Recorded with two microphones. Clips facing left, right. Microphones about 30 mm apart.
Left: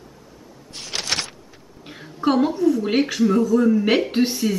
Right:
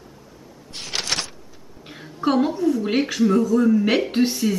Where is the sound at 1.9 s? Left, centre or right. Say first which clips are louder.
Left 1 dB; centre.